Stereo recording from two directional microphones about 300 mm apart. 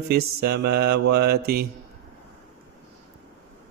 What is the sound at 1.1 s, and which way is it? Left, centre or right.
Mantra, right.